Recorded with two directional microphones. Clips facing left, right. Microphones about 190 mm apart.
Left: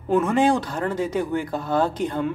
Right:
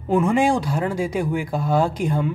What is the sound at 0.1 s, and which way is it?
Speech, 10° right (ahead or behind).